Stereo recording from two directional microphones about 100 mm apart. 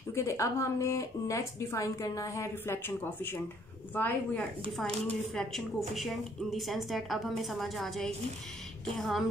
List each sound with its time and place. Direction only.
0.1 s a woman's voice: 30° left (ahead or behind)
5.0 s speech: 5° left (ahead or behind)